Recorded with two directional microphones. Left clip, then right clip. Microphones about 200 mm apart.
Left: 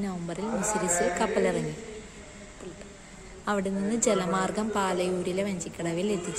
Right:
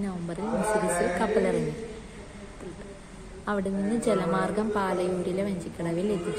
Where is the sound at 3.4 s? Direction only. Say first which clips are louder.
Even; 30° left (ahead or behind).